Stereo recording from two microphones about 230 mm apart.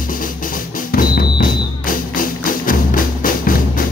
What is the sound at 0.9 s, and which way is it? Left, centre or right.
Music, left.